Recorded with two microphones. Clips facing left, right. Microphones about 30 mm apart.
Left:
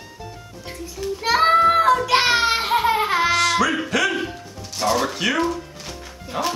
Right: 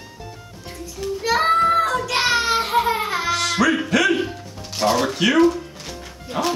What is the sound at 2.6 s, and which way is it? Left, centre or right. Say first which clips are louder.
Baby laughter: left 1 dB; centre.